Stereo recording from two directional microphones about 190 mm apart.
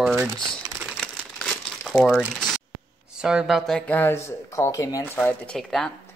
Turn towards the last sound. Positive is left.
turn(degrees=5)  # may be behind; listen again after turning